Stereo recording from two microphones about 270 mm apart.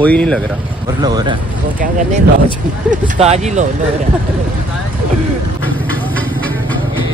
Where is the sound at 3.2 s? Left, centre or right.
Right.